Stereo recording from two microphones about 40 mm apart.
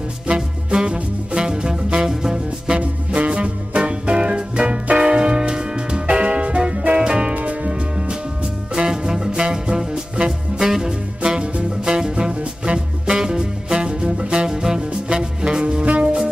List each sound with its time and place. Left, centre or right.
0.3 s music: right
7.0 s music: right
7.3 s music: right
8.7 s music: centre
15.8 s music: right